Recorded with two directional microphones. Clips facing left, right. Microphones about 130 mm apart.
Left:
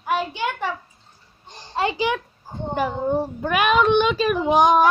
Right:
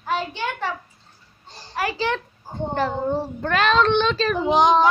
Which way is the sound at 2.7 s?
10° left (ahead or behind).